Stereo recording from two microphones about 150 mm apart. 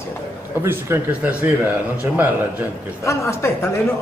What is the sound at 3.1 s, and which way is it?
Speech, 20° left (ahead or behind).